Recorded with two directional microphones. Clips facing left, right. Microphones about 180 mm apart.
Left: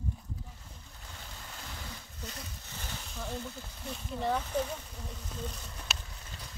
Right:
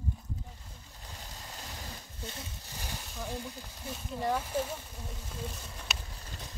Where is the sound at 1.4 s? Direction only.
40° right (ahead or behind).